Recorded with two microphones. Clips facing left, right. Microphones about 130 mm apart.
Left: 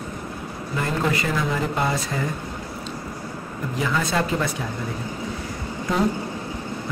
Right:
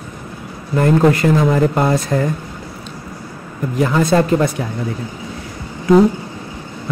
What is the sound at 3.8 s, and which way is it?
Speech, 50° right (ahead or behind).